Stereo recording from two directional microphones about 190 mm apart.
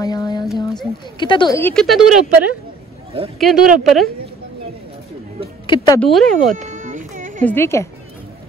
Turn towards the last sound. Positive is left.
turn(degrees=15)  # may be behind; listen again after turning